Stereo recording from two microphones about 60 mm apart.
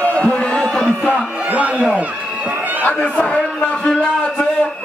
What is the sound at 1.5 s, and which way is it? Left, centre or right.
Speech, right.